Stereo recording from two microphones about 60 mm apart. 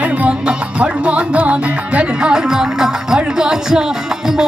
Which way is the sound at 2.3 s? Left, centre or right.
Centre.